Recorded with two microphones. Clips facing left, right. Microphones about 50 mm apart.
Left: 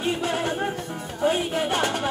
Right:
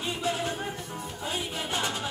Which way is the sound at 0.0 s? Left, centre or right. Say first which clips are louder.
Left 5 dB; left.